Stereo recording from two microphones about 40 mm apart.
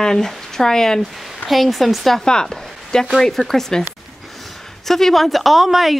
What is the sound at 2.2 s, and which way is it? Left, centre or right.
A woman's voice, centre.